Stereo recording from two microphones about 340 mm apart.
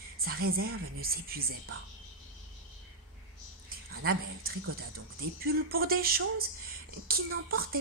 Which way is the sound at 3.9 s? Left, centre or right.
Right.